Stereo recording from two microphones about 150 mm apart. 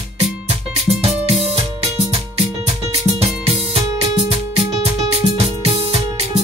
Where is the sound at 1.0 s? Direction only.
45° right (ahead or behind).